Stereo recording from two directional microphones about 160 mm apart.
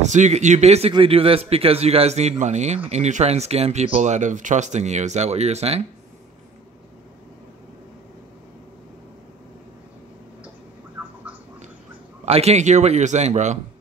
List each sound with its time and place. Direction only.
0.0 s a man's voice: 45° right (ahead or behind)
11.0 s bird: 10° right (ahead or behind)
12.3 s speech: 40° right (ahead or behind)